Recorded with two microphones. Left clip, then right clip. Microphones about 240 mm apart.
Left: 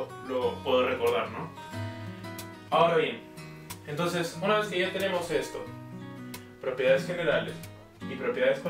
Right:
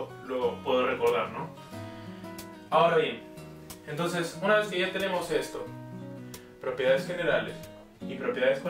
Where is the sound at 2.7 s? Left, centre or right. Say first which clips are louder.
Even; centre.